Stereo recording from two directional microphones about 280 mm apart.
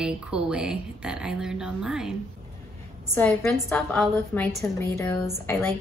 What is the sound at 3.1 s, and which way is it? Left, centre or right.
A woman's voice, centre.